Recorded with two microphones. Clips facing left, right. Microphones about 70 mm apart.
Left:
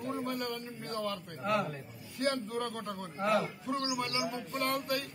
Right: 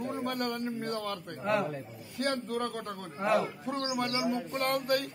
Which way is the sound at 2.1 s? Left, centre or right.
Right.